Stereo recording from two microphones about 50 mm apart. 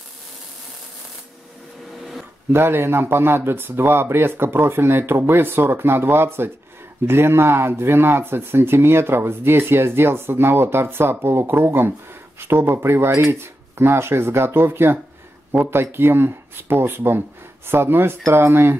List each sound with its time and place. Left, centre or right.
2.5 s speech: right